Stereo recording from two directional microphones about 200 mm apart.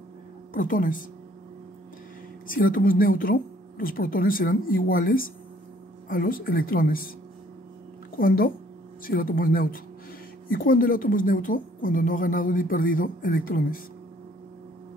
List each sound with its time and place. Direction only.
0.5 s speech: 45° left (ahead or behind)
2.5 s speech: 45° left (ahead or behind)
8.2 s speech: 45° left (ahead or behind)